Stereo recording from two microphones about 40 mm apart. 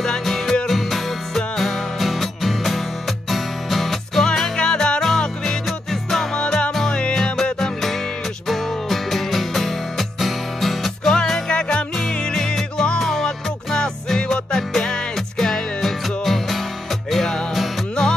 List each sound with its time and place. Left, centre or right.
0.2 s music: centre
4.6 s music: centre
5.7 s music: centre
6.3 s music: centre
8.5 s music: centre
11.1 s music: centre
13.0 s music: centre